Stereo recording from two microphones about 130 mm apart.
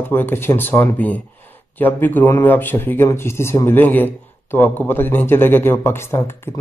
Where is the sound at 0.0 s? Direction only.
15° left (ahead or behind).